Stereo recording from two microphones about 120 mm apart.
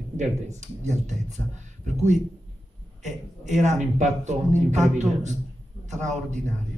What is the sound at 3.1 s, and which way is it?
A man's voice, 75° right (ahead or behind).